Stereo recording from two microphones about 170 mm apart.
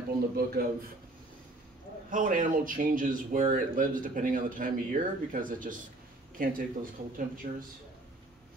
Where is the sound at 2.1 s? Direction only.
50° right (ahead or behind).